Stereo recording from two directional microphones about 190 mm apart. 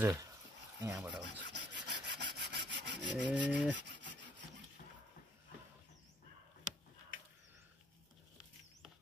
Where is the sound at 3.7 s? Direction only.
70° right (ahead or behind).